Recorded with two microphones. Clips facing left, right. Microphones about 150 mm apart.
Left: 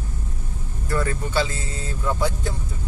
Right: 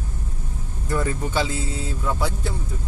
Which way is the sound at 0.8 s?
15° right (ahead or behind).